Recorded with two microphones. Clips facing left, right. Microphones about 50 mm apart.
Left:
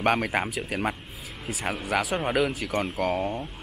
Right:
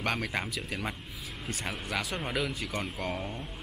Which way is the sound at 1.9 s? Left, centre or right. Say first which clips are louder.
Left 9 dB; centre.